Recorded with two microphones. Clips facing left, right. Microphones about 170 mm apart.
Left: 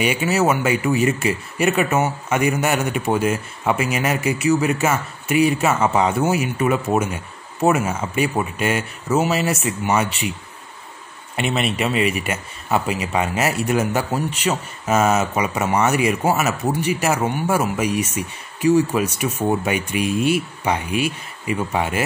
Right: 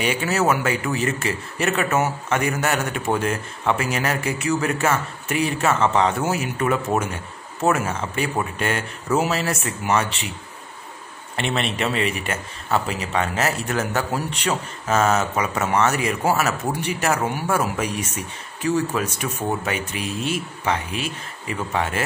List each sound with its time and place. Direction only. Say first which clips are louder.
0.0 s speech: left 3 dB; 10° left (ahead or behind)
11.3 s speech: left 3 dB; 5° left (ahead or behind)